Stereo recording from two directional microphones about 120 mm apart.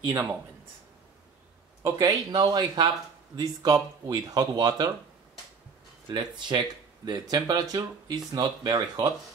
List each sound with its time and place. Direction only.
0.0 s speech: 30° right (ahead or behind)
1.8 s speech: 35° right (ahead or behind)
6.0 s speech: 40° right (ahead or behind)